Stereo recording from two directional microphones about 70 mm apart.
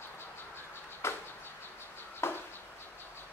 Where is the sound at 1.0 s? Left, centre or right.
Left.